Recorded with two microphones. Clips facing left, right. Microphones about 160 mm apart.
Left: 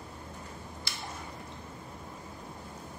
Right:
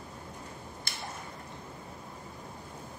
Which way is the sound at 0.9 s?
50° right (ahead or behind).